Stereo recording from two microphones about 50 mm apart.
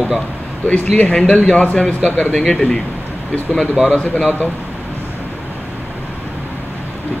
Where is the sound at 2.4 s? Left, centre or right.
Centre.